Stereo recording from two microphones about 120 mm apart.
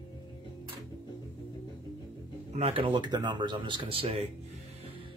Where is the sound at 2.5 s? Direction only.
60° right (ahead or behind).